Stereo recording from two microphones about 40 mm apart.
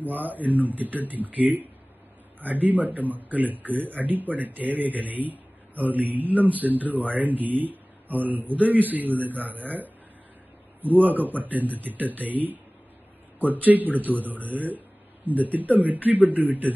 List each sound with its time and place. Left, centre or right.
0.0 s speech: right